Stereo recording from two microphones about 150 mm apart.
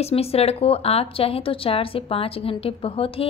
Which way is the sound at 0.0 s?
40° left (ahead or behind).